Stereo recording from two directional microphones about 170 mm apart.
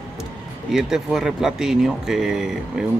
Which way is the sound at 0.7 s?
Centre (ahead or behind).